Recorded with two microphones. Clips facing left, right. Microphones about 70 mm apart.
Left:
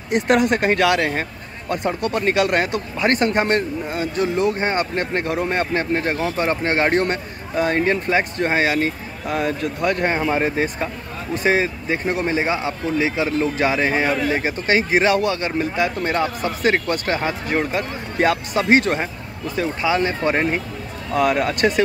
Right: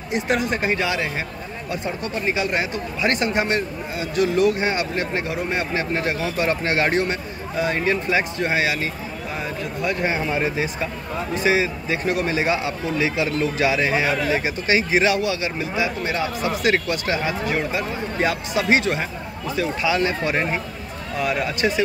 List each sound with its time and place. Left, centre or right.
0.1 s speech: left
9.3 s speech: left
10.1 s speech: left
21.1 s speech: left